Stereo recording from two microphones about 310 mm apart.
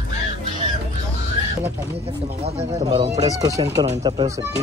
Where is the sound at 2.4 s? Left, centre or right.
Centre.